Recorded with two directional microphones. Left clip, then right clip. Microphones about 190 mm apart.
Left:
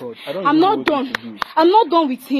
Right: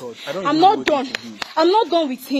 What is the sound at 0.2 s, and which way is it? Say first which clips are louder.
Speech: even; 35° left (ahead or behind).